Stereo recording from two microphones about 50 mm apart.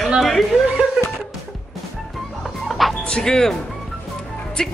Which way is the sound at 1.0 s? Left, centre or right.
Centre.